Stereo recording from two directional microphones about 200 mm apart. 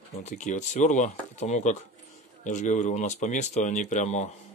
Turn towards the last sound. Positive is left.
turn(degrees=35)  # may be behind; listen again after turning